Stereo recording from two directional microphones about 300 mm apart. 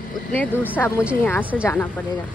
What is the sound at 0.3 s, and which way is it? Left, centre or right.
Speech, centre.